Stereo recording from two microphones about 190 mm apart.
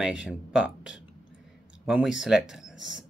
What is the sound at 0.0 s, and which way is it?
Speech, 5° right (ahead or behind).